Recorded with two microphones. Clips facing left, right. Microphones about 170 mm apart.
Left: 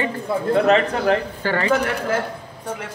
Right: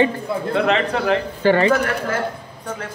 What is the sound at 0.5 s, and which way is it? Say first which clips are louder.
Speech: left 2 dB; 40° left (ahead or behind).